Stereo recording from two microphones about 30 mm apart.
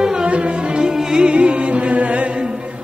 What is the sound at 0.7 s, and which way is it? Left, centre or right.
Music, right.